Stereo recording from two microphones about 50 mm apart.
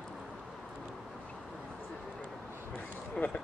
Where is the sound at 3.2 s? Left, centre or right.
Centre.